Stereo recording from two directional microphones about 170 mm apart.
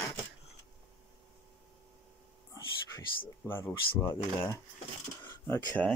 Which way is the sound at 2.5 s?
15° left (ahead or behind).